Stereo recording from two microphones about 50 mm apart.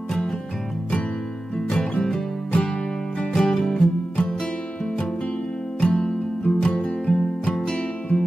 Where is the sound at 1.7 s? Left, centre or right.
Left.